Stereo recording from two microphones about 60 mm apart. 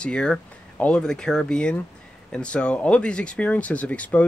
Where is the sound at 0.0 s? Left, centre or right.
Centre.